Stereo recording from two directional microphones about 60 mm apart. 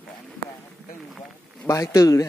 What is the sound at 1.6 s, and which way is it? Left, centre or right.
Speech, left.